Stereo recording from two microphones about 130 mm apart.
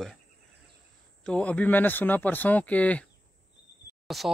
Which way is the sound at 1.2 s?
10° left (ahead or behind).